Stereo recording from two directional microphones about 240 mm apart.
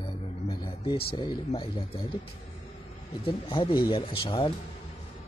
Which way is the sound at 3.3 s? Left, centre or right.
Left.